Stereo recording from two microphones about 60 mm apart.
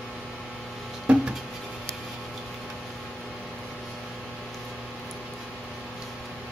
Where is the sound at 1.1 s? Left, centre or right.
Centre.